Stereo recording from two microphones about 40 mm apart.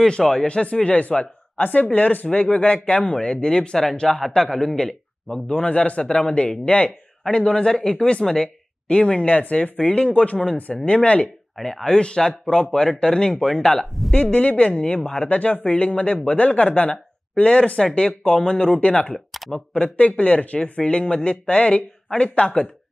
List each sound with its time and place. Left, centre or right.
0.2 s a man's voice: centre
0.5 s a man's voice: left
11.6 s speech: centre
14.1 s speech: left
15.2 s speech: left
19.1 s a sound: centre
19.5 s speech: left